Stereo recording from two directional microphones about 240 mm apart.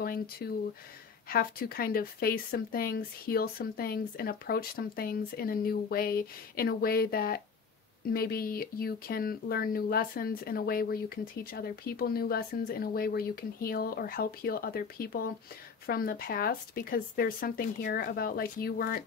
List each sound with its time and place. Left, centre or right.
0.0 s speech: left